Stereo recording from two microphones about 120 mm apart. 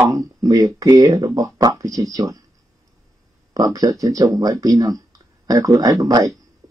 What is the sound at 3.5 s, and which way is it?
Speech, 30° right (ahead or behind).